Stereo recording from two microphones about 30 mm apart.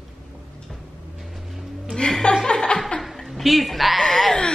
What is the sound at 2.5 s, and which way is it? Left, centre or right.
Laughter, left.